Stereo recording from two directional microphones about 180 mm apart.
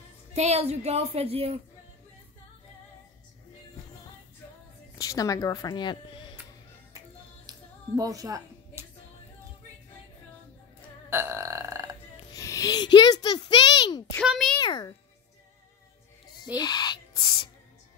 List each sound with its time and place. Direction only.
0.3 s a woman's voice: 35° right (ahead or behind)
4.9 s speech: 20° left (ahead or behind)
7.4 s music: 20° right (ahead or behind)
11.1 s burping: 15° right (ahead or behind)
12.3 s a child's voice: 20° left (ahead or behind)
14.2 s a child's voice: 5° right (ahead or behind)
14.6 s a child's voice: 20° left (ahead or behind)
16.5 s owl: 25° left (ahead or behind)